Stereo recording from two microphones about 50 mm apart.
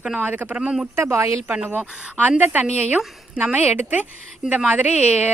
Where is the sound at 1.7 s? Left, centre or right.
Right.